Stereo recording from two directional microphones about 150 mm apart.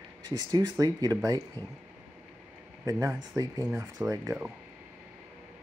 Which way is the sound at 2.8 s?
20° right (ahead or behind).